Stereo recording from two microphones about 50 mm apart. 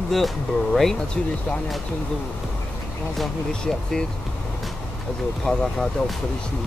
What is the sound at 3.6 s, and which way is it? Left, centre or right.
Speech, centre.